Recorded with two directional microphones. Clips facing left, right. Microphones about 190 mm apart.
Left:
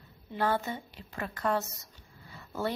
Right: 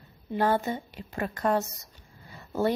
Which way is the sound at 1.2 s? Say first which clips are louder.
Right 4 dB; 40° right (ahead or behind).